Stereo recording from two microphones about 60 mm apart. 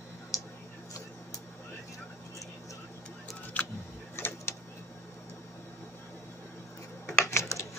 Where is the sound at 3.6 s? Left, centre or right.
Left.